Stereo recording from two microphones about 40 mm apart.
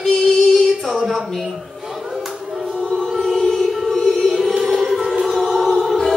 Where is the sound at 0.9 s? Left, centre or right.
Centre.